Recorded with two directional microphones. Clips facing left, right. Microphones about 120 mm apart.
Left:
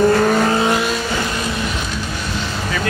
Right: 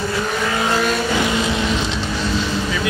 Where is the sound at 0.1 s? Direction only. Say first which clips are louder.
Left 7 dB; 55° left (ahead or behind).